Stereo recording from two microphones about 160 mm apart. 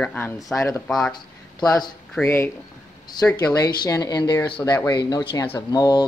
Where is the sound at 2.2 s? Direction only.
15° left (ahead or behind).